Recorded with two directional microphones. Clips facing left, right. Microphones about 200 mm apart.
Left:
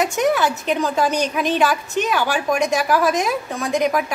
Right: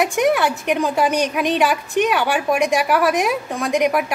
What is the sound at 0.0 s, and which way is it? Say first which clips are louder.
A woman's voice: right 1 dB; 15° right (ahead or behind).